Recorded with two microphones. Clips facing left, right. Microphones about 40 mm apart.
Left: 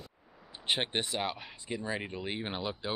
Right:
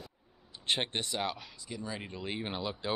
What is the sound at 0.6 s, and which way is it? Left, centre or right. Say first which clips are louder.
Speech: left 1 dB; centre.